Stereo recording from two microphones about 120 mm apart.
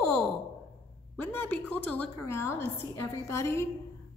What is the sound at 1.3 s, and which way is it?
A woman's voice, 15° left (ahead or behind).